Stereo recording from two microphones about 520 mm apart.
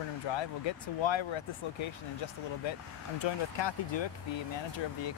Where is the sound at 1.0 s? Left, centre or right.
Left.